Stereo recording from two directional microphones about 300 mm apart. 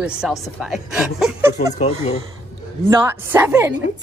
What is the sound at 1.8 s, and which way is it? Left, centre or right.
Speech, left.